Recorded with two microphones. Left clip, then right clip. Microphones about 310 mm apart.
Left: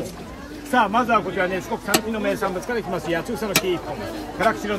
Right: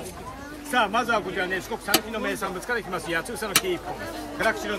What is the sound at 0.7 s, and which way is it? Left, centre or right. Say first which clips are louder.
Speech: left 4 dB; centre.